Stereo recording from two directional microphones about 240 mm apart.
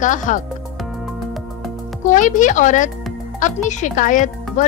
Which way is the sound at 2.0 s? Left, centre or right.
Left.